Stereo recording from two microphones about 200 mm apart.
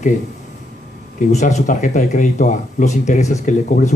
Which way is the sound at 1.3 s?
35° left (ahead or behind).